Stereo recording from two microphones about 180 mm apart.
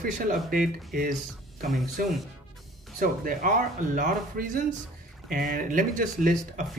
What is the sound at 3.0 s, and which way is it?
Speech, 50° right (ahead or behind).